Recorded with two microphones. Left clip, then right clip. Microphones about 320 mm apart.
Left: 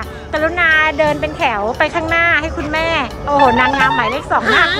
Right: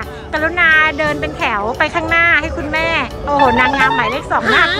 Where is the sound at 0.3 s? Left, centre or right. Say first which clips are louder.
Right 1 dB; centre.